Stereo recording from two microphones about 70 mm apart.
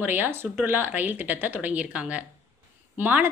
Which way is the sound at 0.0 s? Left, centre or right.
Right.